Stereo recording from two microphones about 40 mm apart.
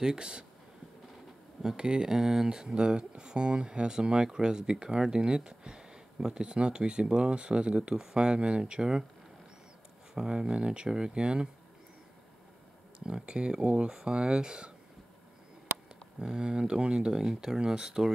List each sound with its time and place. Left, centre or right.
0.0 s speech: centre
1.6 s speech: centre
10.1 s speech: centre
13.0 s speech: right
16.2 s speech: centre
17.2 s speech: centre